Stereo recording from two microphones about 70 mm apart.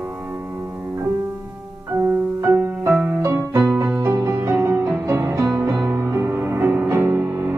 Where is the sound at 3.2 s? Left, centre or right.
Right.